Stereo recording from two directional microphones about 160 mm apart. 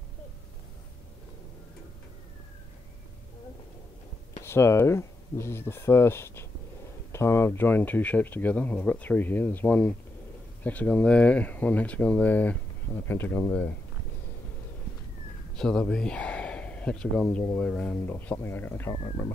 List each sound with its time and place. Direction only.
4.4 s speech: 15° left (ahead or behind)
15.5 s speech: 5° left (ahead or behind)